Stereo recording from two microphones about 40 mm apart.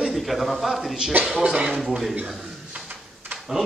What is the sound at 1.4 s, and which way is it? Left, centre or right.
Speech, right.